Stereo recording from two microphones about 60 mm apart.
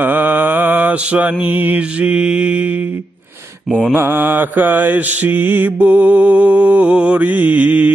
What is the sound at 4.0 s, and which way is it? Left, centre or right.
Mantra, right.